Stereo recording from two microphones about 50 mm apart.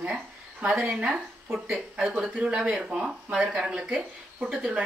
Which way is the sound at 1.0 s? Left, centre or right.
Centre.